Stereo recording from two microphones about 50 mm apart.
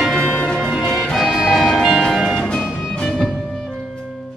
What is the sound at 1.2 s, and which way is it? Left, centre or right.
Music, centre.